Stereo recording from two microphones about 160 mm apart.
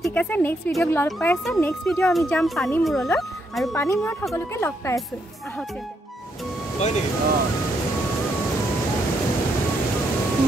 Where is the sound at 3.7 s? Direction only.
15° left (ahead or behind).